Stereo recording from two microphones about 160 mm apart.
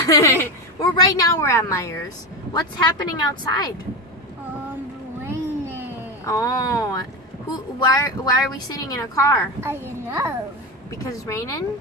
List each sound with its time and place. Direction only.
0.0 s a woman's voice: 20° left (ahead or behind)
5.2 s a sound: 15° right (ahead or behind)
6.2 s a woman's voice: 20° left (ahead or behind)
9.6 s a child's voice: 15° right (ahead or behind)
11.0 s a woman's voice: 20° left (ahead or behind)